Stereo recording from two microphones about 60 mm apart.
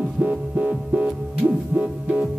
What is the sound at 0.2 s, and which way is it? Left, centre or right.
Music, right.